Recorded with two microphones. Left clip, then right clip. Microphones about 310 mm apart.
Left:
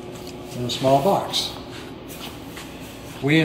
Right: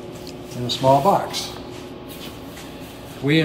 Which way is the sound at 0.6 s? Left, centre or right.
Centre.